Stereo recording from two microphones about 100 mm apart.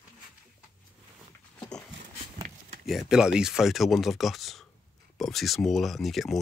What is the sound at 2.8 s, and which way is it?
Speech, centre (ahead or behind).